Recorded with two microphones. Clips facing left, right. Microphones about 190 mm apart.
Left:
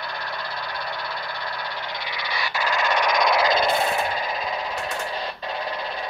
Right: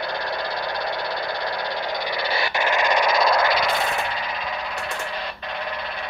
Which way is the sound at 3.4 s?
25° left (ahead or behind).